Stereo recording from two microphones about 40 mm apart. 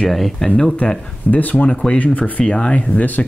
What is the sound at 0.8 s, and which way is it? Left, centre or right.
Speech, left.